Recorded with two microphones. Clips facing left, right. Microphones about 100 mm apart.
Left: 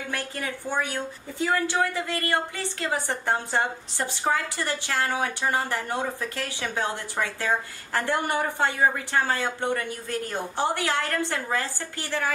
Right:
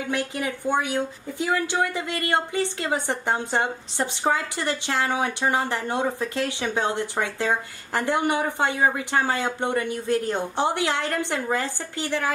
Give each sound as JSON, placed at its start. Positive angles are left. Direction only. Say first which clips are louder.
{"t": 0.1, "sound": "a woman's voice", "louder": "right 5 dB", "side_deg": -15}